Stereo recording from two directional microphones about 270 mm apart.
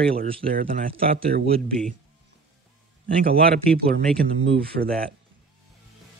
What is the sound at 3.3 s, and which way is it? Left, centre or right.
Speech, right.